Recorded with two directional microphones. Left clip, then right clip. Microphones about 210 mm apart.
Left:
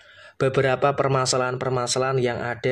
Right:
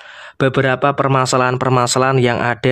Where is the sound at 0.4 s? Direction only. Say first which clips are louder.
Right 5 dB; 25° right (ahead or behind).